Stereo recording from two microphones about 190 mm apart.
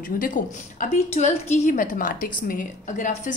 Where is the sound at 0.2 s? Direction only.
40° left (ahead or behind).